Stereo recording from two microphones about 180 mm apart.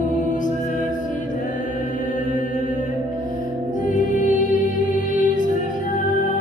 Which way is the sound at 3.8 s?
45° left (ahead or behind).